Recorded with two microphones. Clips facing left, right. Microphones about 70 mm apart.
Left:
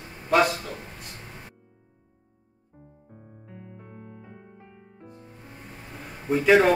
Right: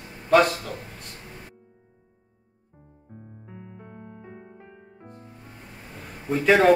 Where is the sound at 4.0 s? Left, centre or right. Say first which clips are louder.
Right 2 dB; right.